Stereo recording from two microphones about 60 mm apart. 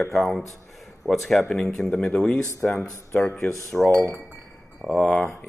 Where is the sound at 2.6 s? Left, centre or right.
Centre.